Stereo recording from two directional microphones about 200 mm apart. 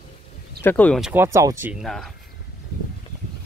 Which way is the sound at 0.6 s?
5° left (ahead or behind).